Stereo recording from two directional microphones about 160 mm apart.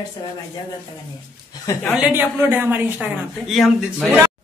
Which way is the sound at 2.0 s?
10° right (ahead or behind).